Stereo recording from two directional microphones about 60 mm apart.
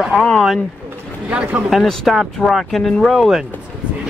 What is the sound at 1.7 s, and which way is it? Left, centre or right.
Speech, centre.